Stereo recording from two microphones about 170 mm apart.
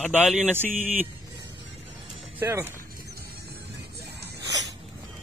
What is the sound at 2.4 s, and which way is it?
Speech, 15° right (ahead or behind).